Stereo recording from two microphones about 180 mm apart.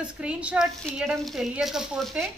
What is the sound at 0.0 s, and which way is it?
Speech, 5° right (ahead or behind).